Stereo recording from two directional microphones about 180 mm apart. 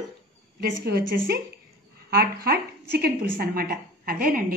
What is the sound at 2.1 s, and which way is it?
A woman's voice, 60° right (ahead or behind).